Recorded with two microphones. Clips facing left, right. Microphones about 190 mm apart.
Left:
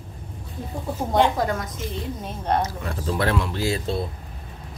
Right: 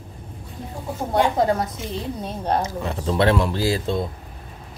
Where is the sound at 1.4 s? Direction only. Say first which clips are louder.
Right 5 dB; 30° right (ahead or behind).